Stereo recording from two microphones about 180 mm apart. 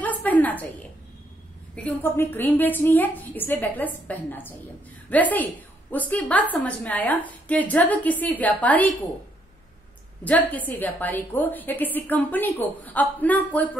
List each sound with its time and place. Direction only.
0.0 s a sound: 10° left (ahead or behind)
1.8 s a woman's voice: 10° left (ahead or behind)
10.2 s a woman's voice: 10° left (ahead or behind)